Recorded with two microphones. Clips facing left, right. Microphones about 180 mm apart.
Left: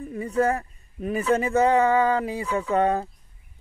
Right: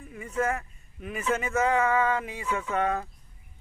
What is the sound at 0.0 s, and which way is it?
Speech, 35° left (ahead or behind).